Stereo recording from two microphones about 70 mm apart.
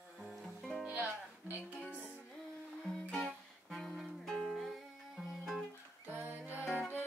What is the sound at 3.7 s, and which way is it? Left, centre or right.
Music, centre.